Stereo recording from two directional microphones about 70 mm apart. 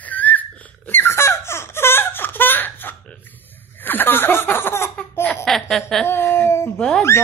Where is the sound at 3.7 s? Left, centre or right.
Left.